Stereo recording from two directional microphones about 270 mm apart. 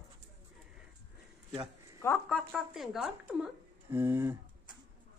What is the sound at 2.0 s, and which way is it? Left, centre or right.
Speech, centre.